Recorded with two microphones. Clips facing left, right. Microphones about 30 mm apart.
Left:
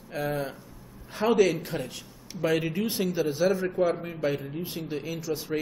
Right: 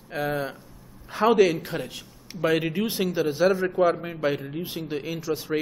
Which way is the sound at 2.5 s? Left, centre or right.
Right.